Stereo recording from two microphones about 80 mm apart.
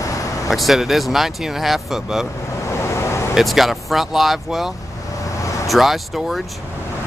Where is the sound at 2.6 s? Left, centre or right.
Left.